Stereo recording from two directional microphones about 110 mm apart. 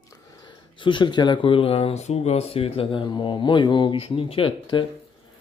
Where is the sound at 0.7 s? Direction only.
45° left (ahead or behind).